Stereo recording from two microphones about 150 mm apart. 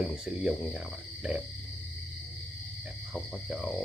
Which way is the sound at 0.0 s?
Centre (ahead or behind).